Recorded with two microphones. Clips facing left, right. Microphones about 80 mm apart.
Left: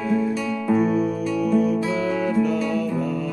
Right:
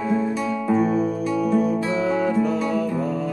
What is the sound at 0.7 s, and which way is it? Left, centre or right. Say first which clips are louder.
Music: left 1 dB; right.